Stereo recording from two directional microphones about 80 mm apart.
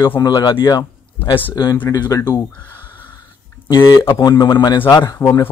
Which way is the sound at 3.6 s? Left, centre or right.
Left.